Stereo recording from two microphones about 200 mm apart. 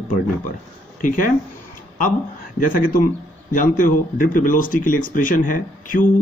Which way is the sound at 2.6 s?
45° left (ahead or behind).